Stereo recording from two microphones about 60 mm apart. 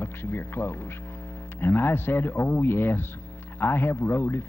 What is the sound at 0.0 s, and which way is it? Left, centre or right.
Speech, left.